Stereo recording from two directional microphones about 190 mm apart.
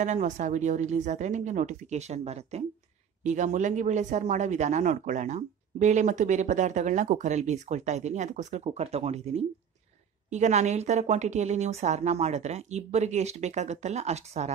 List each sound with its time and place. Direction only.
0.0 s speech: 40° right (ahead or behind)